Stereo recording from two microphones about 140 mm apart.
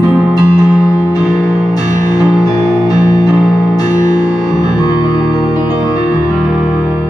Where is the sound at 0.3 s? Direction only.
25° left (ahead or behind).